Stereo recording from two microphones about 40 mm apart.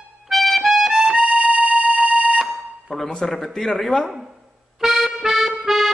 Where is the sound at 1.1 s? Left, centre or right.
Right.